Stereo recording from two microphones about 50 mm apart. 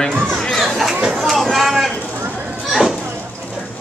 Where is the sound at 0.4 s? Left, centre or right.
Centre.